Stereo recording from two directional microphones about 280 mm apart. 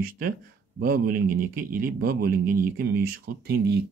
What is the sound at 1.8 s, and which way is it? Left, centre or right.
Speech, right.